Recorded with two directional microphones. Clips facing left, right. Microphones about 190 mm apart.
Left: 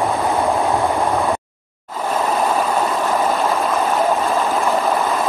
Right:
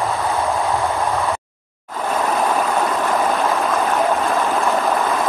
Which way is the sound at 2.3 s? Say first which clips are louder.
Left 1 dB; 10° left (ahead or behind).